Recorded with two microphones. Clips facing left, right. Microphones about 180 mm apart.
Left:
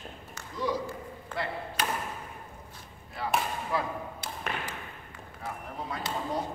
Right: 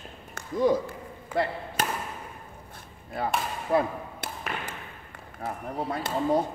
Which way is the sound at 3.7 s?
55° right (ahead or behind).